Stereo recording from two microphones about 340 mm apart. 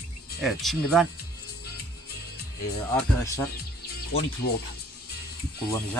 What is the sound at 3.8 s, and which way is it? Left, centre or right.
Music, left.